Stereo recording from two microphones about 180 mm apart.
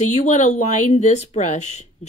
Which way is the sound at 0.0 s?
40° left (ahead or behind).